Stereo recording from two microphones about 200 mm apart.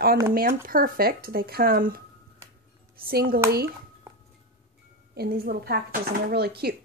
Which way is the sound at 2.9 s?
45° right (ahead or behind).